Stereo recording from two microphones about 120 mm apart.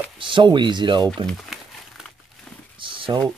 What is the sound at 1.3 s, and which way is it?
Crumpling, 5° right (ahead or behind).